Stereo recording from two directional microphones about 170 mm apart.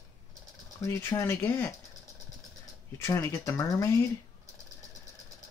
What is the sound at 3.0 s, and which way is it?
Speech, 15° left (ahead or behind).